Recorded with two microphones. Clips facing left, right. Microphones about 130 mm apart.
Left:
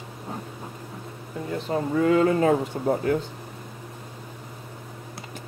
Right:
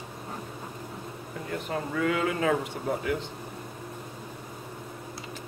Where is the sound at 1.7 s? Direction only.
30° left (ahead or behind).